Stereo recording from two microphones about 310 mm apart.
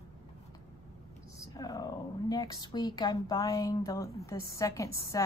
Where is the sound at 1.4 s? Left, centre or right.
Centre.